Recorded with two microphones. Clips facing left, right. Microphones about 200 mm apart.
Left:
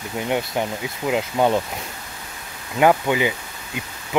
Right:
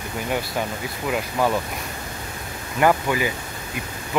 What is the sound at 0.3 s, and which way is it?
Speech, 20° left (ahead or behind).